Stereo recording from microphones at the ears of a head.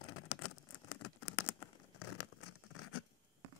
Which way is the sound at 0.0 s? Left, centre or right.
Left.